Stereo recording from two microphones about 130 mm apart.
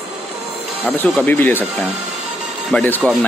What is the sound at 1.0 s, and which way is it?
Speech, 10° left (ahead or behind).